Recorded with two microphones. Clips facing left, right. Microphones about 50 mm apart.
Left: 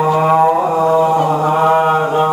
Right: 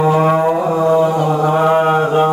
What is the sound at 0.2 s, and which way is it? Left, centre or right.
Music, centre.